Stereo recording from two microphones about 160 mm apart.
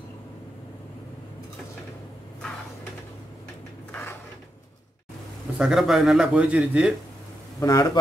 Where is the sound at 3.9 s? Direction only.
15° left (ahead or behind).